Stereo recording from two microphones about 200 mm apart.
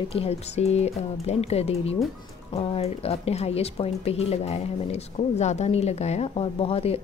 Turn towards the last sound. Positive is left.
turn(degrees=30)  # may be behind; listen again after turning